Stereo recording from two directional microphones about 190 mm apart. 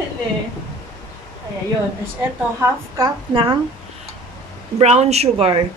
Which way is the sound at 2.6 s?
20° right (ahead or behind).